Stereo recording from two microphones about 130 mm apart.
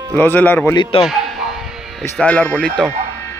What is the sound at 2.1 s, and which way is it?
Speech, 10° left (ahead or behind).